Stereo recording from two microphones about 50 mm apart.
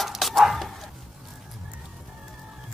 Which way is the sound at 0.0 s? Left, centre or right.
Centre.